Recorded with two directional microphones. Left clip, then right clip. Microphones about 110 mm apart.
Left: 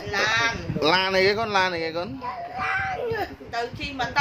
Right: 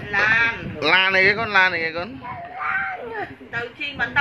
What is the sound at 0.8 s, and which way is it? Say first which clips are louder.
A man's voice: right 4 dB; 30° left (ahead or behind).